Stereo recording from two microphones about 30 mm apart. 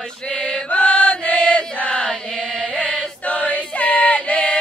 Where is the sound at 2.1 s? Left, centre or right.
Centre.